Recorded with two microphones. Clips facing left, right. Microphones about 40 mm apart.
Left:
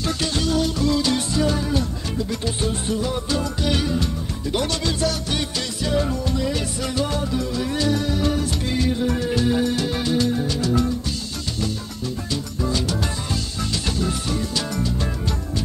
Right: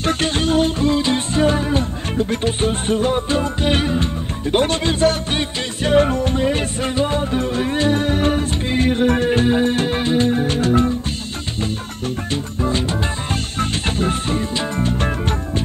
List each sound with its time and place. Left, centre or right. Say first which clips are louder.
0.0 s music: right 5 dB; right
12.3 s music: right 4 dB; right